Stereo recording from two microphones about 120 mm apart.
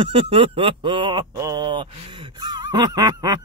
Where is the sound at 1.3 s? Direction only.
30° right (ahead or behind).